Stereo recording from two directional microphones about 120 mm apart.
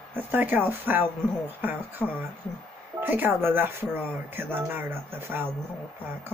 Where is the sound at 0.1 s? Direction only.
15° right (ahead or behind).